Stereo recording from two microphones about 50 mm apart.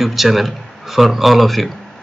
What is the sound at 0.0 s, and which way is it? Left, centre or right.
Speech, centre.